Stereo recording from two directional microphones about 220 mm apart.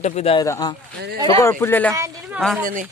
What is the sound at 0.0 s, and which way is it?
Speech, 30° left (ahead or behind).